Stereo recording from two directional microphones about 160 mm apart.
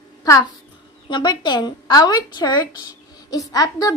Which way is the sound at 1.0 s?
30° left (ahead or behind).